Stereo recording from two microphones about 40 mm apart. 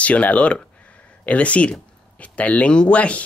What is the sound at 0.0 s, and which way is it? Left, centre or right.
Speech, left.